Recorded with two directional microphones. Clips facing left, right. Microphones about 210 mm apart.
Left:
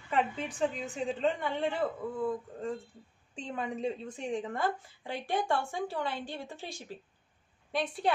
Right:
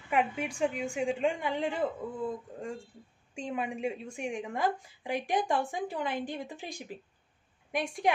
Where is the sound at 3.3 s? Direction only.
10° right (ahead or behind).